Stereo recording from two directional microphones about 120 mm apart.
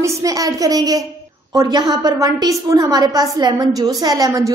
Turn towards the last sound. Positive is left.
turn(degrees=-30)  # may be behind; listen again after turning